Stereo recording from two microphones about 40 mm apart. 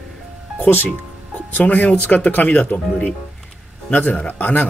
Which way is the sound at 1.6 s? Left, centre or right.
Left.